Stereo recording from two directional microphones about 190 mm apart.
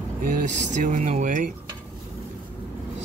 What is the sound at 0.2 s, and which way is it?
Speech, 45° right (ahead or behind).